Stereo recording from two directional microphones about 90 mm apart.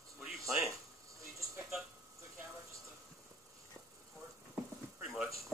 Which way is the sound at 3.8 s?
25° right (ahead or behind).